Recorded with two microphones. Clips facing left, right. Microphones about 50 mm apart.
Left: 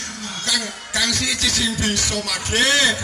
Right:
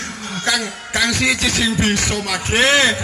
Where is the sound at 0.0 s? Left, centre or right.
Right.